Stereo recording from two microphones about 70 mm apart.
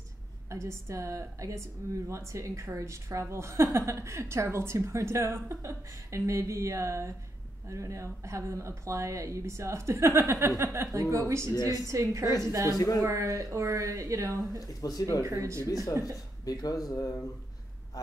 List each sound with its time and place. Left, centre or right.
0.5 s a woman's voice: right
11.5 s speech: left
11.9 s a woman's voice: right
12.6 s speech: left
13.0 s a woman's voice: right
14.6 s speech: left
15.2 s a woman's voice: right
15.6 s speech: left
16.9 s speech: left